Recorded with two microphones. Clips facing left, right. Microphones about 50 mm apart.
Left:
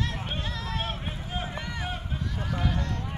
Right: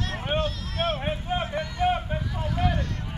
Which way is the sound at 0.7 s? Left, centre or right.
Right.